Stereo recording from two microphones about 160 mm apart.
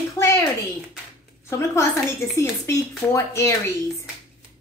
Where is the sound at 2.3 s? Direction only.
20° left (ahead or behind).